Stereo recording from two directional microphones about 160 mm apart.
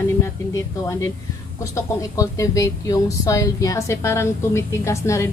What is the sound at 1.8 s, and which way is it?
A woman's voice, 20° left (ahead or behind).